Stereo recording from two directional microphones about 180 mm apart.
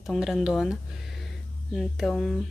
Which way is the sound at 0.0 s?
Centre (ahead or behind).